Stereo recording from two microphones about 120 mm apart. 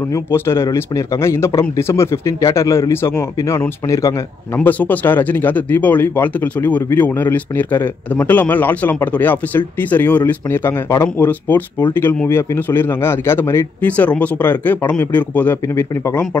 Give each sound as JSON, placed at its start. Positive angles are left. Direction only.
{"t": 0.1, "sound": "speech", "side_deg": 20}
{"t": 4.6, "sound": "speech", "side_deg": 15}